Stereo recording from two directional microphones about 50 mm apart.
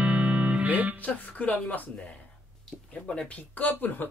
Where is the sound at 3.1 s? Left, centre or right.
Left.